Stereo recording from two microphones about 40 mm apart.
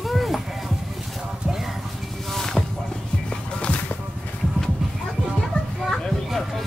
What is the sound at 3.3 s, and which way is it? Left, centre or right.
Music, left.